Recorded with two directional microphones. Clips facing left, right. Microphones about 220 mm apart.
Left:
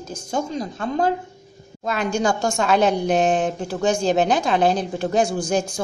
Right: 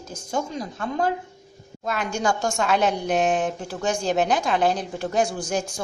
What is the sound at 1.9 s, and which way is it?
A woman's voice, 30° left (ahead or behind).